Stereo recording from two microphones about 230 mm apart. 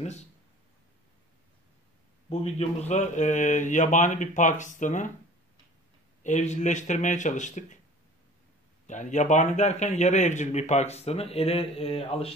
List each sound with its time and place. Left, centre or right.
2.2 s a man's voice: left
6.2 s a man's voice: left
8.8 s a man's voice: left